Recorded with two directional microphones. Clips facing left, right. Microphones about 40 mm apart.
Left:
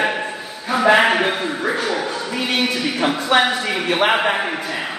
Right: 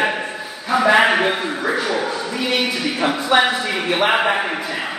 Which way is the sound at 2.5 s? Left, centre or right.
Left.